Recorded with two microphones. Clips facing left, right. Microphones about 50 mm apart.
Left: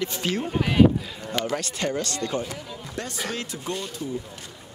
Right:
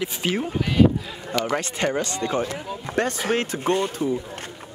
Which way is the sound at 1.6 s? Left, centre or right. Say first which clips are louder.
Right 3 dB; right.